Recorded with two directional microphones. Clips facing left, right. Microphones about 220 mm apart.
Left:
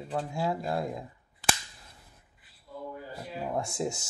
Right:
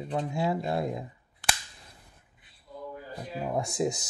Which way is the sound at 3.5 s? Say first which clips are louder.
Right 3 dB; 20° right (ahead or behind).